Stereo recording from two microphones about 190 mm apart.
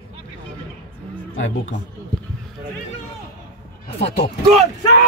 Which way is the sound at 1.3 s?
90° left.